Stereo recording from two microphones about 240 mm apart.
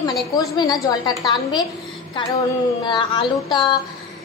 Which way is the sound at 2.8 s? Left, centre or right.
Centre.